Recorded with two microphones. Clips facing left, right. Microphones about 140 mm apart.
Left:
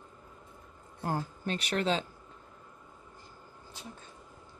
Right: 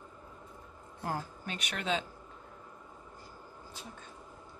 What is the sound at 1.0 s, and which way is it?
Speech, 30° left (ahead or behind).